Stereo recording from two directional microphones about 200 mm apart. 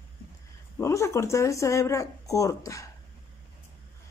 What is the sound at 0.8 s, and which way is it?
Speech, 15° left (ahead or behind).